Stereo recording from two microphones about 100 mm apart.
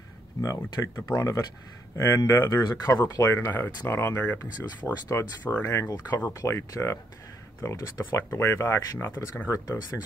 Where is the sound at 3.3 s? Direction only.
25° left (ahead or behind).